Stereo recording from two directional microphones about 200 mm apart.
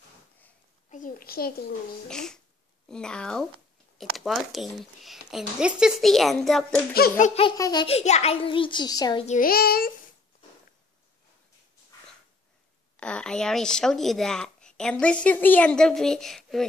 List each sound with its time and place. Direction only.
0.8 s a child's voice: 40° left (ahead or behind)
2.0 s a child's voice: 5° left (ahead or behind)
6.9 s music: 45° left (ahead or behind)
7.4 s a child's voice: 20° left (ahead or behind)
9.2 s a child's voice: 40° left (ahead or behind)
12.9 s speech: 5° left (ahead or behind)